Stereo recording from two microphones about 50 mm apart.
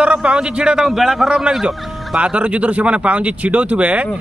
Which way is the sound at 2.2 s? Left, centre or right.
Right.